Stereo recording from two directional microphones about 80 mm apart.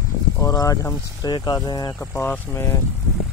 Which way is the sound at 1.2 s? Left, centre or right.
Left.